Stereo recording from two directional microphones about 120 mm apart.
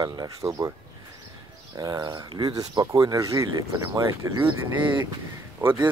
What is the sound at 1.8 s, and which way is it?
Speech, 30° right (ahead or behind).